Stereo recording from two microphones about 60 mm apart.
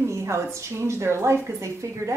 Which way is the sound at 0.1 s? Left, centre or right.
Right.